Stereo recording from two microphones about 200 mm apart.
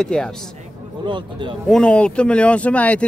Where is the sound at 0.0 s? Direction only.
5° left (ahead or behind).